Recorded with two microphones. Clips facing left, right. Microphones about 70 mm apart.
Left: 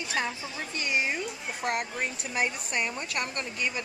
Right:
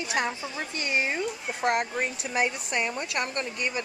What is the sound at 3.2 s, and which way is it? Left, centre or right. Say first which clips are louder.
Speech: right 4 dB; right.